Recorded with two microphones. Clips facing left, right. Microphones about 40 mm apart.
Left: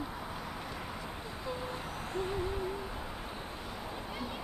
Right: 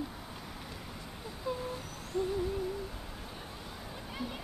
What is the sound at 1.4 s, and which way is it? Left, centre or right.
Owl, centre.